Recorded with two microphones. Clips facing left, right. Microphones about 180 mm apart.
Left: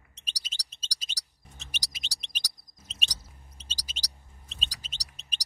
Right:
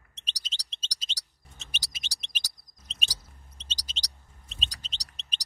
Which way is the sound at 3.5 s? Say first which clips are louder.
Right 2 dB; 10° left (ahead or behind).